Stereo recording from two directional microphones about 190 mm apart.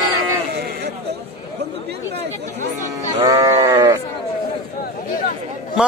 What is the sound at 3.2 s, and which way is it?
Sheep, 15° right (ahead or behind).